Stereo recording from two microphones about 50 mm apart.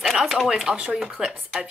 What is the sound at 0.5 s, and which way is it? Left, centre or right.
Speech, centre.